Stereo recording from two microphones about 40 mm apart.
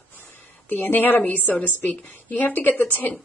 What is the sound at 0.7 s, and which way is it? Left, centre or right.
A woman's voice, left.